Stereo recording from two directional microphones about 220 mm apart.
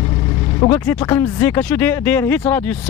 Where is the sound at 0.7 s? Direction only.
10° left (ahead or behind).